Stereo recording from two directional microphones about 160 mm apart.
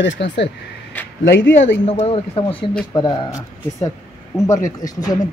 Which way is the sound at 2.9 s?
25° left (ahead or behind).